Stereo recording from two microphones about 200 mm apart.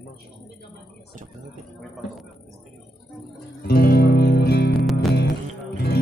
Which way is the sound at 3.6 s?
50° left (ahead or behind).